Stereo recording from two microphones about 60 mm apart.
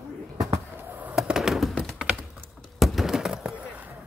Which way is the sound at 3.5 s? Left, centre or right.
Right.